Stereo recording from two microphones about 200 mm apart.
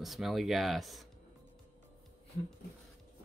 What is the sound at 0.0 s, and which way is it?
Speech, centre (ahead or behind).